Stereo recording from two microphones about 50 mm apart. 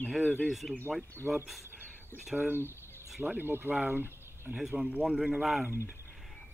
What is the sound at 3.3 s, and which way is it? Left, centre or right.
Speech, right.